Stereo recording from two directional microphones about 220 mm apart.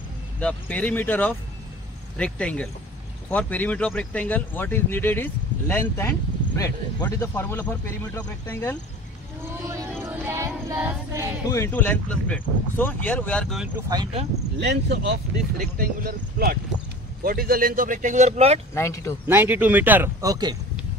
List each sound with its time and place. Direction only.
0.4 s speech: 5° left (ahead or behind)
9.4 s speech: 10° right (ahead or behind)
10.0 s child singing: 10° right (ahead or behind)
11.4 s speech: 10° left (ahead or behind)
13.7 s speech: 20° right (ahead or behind)
14.6 s speech: 50° right (ahead or behind)
15.3 s speech: 35° right (ahead or behind)
18.8 s speech: 15° left (ahead or behind)
19.2 s speech: 10° right (ahead or behind)